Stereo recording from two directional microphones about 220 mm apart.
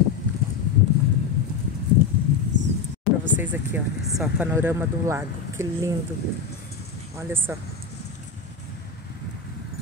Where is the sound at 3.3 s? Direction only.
10° right (ahead or behind).